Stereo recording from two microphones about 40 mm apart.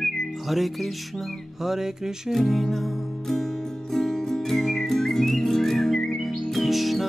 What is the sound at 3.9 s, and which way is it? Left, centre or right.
Music, centre.